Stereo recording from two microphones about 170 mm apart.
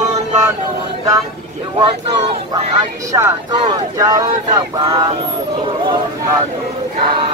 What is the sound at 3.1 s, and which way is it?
Speech, 20° right (ahead or behind).